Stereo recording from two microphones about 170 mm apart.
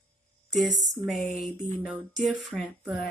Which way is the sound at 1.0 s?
Centre (ahead or behind).